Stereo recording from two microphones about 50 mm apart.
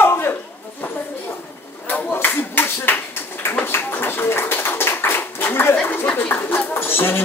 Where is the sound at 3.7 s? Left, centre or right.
Left.